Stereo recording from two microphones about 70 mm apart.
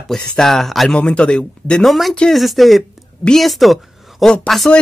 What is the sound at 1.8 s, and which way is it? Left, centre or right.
A woman's voice, centre.